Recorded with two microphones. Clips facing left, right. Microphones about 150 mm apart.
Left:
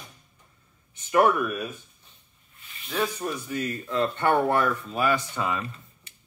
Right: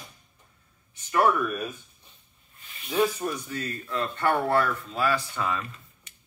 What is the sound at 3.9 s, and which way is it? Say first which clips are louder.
Speech: left 3 dB; 25° left (ahead or behind).